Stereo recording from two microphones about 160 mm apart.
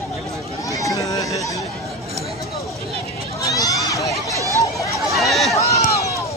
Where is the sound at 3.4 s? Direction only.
20° left (ahead or behind).